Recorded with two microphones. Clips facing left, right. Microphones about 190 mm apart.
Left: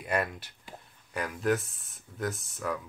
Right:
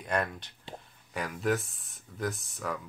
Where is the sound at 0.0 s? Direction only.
5° left (ahead or behind).